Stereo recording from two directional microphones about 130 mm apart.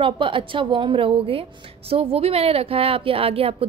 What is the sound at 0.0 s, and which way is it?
A woman's voice, 40° right (ahead or behind).